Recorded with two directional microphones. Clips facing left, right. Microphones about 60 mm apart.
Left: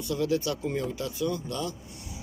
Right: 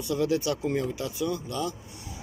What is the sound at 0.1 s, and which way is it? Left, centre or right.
Speech, centre.